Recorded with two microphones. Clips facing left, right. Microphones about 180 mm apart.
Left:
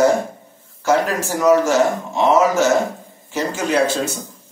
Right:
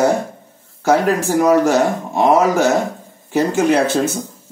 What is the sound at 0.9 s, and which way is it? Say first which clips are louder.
Speech: right 3 dB; 55° right (ahead or behind).